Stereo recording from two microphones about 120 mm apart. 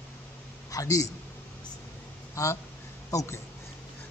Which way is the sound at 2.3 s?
25° left (ahead or behind).